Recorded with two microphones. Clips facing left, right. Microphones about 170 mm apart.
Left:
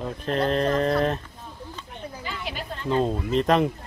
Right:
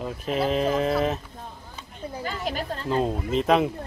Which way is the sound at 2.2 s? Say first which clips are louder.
Right 5 dB; 40° right (ahead or behind).